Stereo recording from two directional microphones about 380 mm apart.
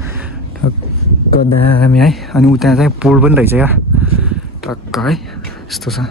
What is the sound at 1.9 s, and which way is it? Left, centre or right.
Speech, centre.